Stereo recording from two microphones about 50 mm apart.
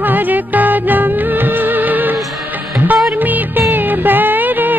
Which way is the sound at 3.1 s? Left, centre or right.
Right.